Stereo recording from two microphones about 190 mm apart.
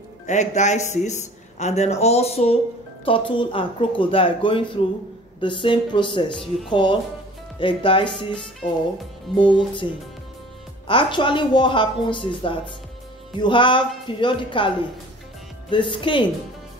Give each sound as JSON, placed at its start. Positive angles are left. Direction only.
{"t": 0.3, "sound": "a woman's voice", "side_deg": 40}
{"t": 10.9, "sound": "a woman's voice", "side_deg": 25}
{"t": 15.7, "sound": "a woman's voice", "side_deg": 25}